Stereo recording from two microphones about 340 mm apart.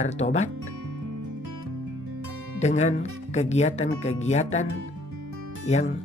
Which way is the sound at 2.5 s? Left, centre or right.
Centre.